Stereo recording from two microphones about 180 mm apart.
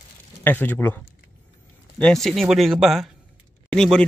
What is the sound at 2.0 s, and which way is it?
Speech, 5° left (ahead or behind).